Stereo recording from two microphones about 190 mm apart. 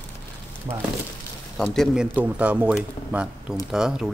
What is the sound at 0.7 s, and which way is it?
Speech, 30° right (ahead or behind).